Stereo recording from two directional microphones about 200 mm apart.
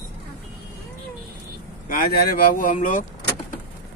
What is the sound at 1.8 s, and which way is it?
Speech, 45° left (ahead or behind).